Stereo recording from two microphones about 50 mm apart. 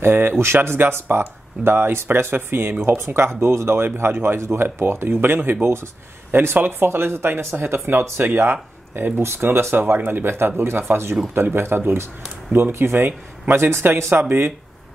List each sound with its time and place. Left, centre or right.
0.0 s speech: right
8.4 s speech: right
9.8 s speech: right